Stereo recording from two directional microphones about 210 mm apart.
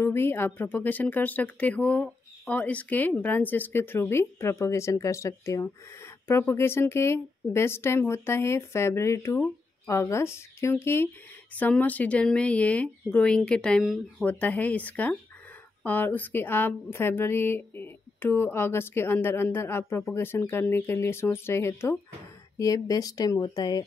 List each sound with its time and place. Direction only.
0.0 s speech: 10° left (ahead or behind)